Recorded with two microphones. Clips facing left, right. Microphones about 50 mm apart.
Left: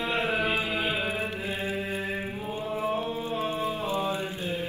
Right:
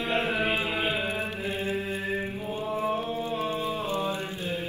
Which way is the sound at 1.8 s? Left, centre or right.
Left.